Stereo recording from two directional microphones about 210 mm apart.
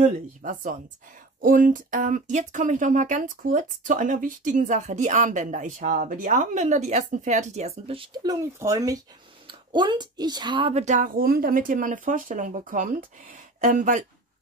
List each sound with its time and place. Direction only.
0.0 s speech: 40° right (ahead or behind)